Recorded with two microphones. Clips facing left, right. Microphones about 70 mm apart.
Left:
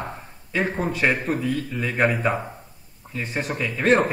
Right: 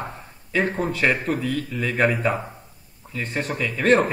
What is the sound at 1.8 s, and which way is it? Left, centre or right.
Speech, centre.